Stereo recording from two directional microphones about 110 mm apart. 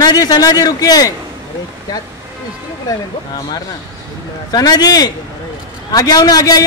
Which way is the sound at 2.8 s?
35° left (ahead or behind).